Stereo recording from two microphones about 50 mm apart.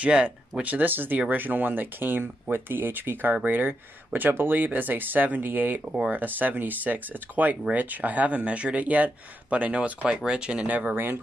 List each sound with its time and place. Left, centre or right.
0.6 s speech: right